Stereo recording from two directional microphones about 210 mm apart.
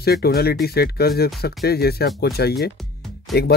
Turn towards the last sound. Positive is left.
turn(degrees=50)  # may be behind; listen again after turning